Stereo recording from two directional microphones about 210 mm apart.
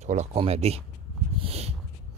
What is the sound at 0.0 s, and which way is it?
Speech, 35° right (ahead or behind).